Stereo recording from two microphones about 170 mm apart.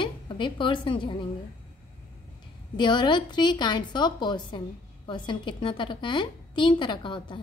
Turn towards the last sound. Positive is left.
turn(degrees=30)  # may be behind; listen again after turning